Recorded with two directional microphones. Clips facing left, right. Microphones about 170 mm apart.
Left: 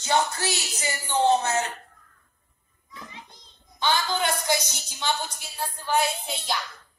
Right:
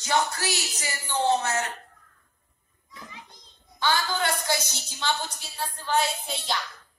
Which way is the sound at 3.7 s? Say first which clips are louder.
Left 1 dB; 20° left (ahead or behind).